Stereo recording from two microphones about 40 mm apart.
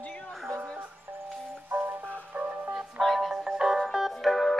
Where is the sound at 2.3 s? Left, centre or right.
Right.